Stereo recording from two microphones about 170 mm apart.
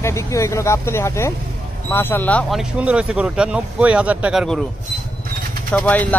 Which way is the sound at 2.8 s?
5° right (ahead or behind).